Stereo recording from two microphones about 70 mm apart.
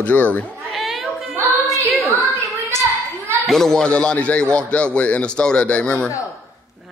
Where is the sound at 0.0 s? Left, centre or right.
Left.